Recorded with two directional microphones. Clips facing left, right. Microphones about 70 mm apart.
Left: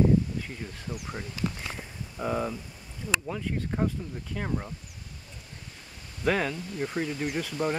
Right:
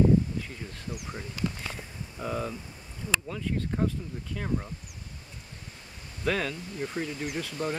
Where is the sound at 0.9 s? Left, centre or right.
Left.